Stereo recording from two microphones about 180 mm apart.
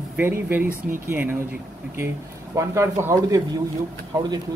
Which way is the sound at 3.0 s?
20° right (ahead or behind).